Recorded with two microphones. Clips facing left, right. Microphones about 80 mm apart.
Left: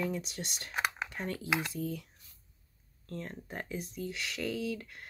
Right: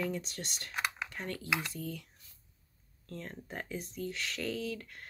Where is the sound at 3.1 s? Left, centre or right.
Centre.